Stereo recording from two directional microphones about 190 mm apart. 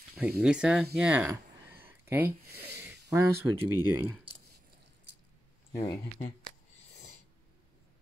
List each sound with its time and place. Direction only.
0.4 s speech: 5° right (ahead or behind)
5.7 s speech: 20° left (ahead or behind)